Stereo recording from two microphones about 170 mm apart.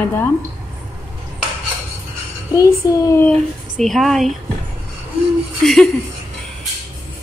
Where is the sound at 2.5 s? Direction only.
20° left (ahead or behind).